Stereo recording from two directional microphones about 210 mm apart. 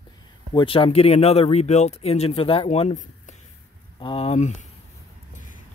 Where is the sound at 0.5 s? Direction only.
25° left (ahead or behind).